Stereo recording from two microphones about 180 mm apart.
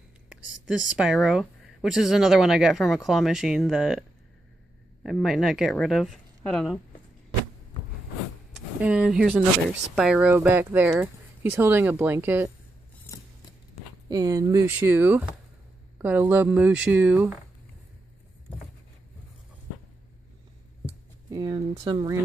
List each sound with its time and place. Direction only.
0.7 s a woman's voice: 5° right (ahead or behind)
5.0 s a woman's voice: centre (ahead or behind)
8.8 s speech: 5° right (ahead or behind)
13.0 s scissors: 20° left (ahead or behind)
14.0 s speech: 20° right (ahead or behind)
21.3 s speech: 20° right (ahead or behind)